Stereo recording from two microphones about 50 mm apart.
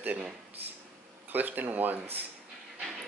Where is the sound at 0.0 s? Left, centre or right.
Right.